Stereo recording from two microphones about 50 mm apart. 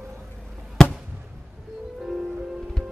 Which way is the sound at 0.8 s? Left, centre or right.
Centre.